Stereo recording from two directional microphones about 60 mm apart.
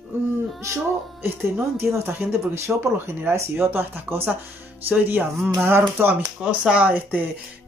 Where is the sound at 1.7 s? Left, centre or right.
Right.